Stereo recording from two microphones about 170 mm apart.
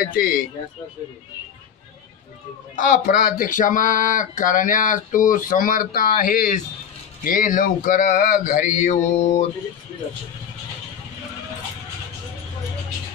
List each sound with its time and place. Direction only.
0.0 s speech: 60° left (ahead or behind)
2.7 s speech: 50° left (ahead or behind)